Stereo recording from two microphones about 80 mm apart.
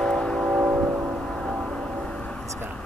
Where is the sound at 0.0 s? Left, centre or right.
Centre.